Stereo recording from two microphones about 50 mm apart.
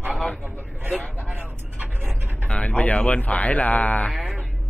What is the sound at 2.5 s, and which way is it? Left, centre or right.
Speech, left.